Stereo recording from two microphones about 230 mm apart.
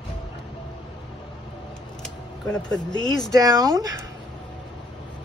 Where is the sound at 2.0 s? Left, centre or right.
Centre.